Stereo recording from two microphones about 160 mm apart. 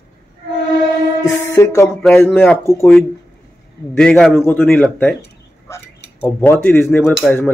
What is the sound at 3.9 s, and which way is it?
Speech, 5° left (ahead or behind).